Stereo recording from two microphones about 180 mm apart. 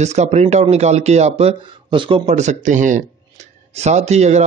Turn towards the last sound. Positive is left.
turn(degrees=-40)  # may be behind; listen again after turning